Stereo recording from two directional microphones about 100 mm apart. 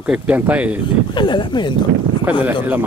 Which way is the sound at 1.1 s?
50° left (ahead or behind).